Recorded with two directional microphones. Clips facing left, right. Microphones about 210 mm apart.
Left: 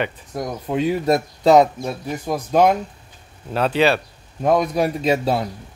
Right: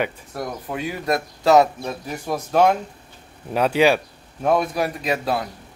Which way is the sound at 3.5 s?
10° right (ahead or behind).